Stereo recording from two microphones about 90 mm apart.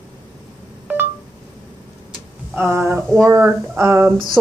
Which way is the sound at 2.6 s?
25° right (ahead or behind).